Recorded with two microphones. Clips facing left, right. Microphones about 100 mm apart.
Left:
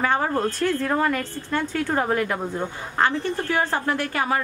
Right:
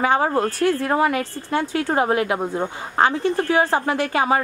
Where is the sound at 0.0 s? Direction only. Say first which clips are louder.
Right 3 dB; 15° right (ahead or behind).